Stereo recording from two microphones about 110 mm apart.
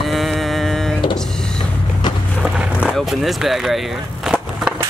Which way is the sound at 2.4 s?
10° right (ahead or behind).